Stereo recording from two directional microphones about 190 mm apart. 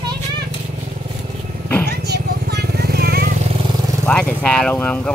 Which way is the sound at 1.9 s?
60° right (ahead or behind).